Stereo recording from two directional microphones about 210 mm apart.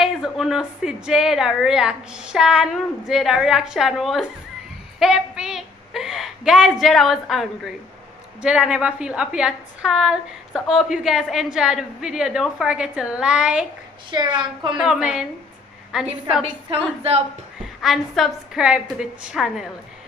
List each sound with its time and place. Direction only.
0.0 s a woman's voice: centre (ahead or behind)
14.1 s a woman's voice: 20° right (ahead or behind)
14.8 s a woman's voice: 5° right (ahead or behind)
16.7 s a woman's voice: 30° right (ahead or behind)
17.8 s a woman's voice: centre (ahead or behind)